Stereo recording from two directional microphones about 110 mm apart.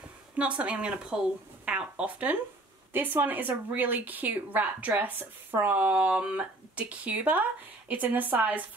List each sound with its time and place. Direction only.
0.4 s a woman's voice: 10° right (ahead or behind)